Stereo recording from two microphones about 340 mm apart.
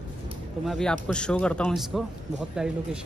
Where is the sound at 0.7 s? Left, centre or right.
Centre.